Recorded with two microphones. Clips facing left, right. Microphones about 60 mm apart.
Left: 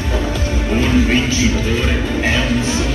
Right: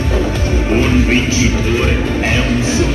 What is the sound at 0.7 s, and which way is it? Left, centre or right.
Music, right.